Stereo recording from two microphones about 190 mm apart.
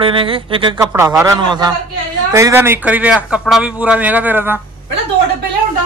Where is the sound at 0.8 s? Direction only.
15° right (ahead or behind).